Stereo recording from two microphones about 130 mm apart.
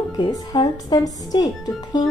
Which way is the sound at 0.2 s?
30° left (ahead or behind).